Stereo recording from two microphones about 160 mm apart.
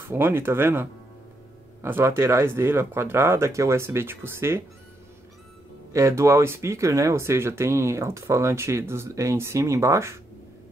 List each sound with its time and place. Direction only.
0.1 s speech: 15° right (ahead or behind)
5.9 s speech: 20° right (ahead or behind)